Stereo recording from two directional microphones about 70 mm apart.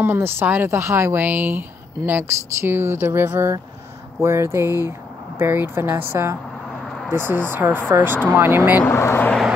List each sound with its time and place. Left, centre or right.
0.0 s speech: right
8.8 s speech: left